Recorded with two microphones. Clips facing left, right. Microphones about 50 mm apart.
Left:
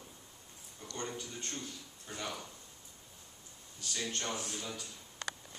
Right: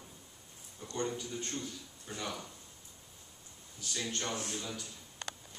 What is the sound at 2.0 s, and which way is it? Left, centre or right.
Speech, centre.